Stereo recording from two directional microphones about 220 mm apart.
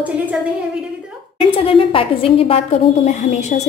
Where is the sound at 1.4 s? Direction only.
25° left (ahead or behind).